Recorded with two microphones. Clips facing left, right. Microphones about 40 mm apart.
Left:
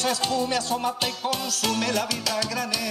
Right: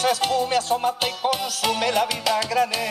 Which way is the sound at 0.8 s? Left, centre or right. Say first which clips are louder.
Right 4 dB; right.